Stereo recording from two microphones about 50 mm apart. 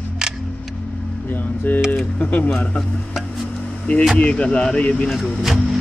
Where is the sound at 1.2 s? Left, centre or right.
Left.